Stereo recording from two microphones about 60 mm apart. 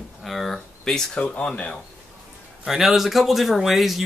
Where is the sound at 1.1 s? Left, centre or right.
Centre.